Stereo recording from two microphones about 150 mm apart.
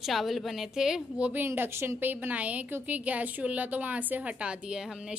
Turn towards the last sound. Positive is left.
turn(degrees=-5)  # may be behind; listen again after turning